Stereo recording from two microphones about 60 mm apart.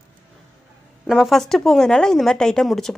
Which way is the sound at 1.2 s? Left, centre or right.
Centre.